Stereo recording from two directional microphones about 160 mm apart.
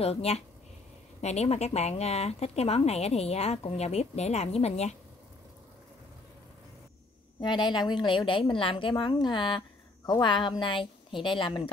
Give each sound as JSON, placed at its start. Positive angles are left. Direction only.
{"t": 0.0, "sound": "speech", "side_deg": 40}
{"t": 7.3, "sound": "a woman's voice", "side_deg": 30}